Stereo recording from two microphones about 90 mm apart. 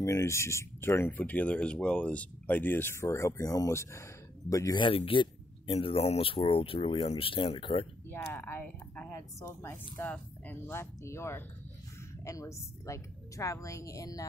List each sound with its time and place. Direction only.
0.0 s a woman's voice: 35° left (ahead or behind)
4.7 s speech: 80° left
8.1 s a woman's voice: 25° left (ahead or behind); by 14.2 s 40° left (ahead or behind)